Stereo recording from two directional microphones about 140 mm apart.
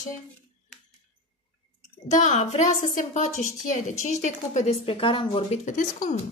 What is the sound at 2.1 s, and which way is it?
A woman's voice, 55° left (ahead or behind).